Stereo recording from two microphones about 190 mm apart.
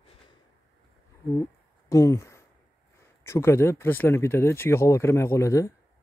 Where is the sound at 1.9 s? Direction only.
15° left (ahead or behind).